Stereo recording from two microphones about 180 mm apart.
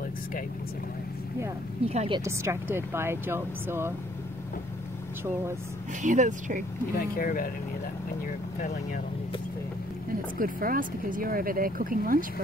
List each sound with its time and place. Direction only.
1.9 s a woman's voice: 35° right (ahead or behind)
2.1 s speech: 15° right (ahead or behind)
6.0 s speech: 45° right (ahead or behind)
7.0 s speech: 50° left (ahead or behind)
10.4 s speech: 50° right (ahead or behind)